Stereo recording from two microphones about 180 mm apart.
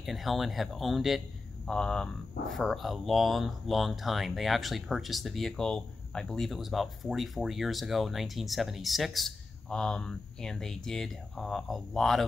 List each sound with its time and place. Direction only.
0.0 s speech: centre (ahead or behind)